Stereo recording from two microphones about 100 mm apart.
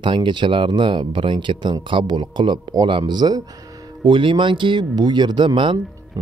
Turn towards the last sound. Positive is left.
turn(degrees=-55)  # may be behind; listen again after turning